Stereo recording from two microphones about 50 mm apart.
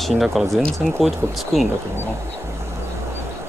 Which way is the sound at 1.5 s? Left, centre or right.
Centre.